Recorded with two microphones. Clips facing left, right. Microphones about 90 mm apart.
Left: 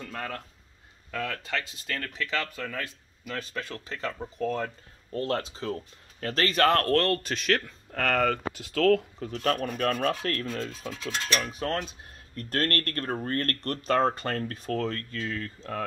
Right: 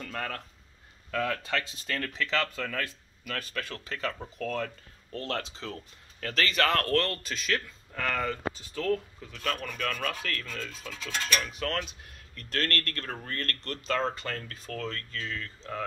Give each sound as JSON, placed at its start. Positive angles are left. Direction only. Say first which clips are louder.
{"t": 0.0, "sound": "speech", "louder": "even", "side_deg": 10}
{"t": 3.3, "sound": "speech", "louder": "left 1 dB", "side_deg": 25}
{"t": 5.1, "sound": "speech", "louder": "left 5 dB", "side_deg": 35}
{"t": 9.3, "sound": "speech", "louder": "left 6 dB", "side_deg": 40}